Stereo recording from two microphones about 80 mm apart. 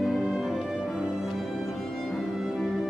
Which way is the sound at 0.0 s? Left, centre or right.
Centre.